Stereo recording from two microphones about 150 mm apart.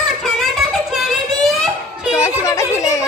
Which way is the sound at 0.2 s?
Centre (ahead or behind).